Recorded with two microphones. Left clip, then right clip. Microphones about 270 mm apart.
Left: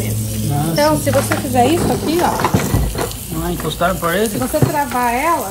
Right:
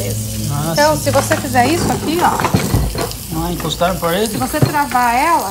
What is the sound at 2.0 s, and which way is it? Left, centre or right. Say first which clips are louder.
Speech: right 3 dB; centre.